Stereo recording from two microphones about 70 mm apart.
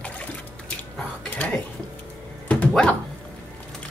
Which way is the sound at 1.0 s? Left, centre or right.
Left.